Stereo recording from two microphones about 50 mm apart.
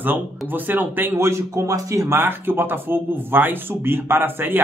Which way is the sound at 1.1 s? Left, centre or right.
Right.